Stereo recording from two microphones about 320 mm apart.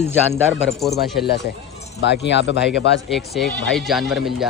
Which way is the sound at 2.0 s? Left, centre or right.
Left.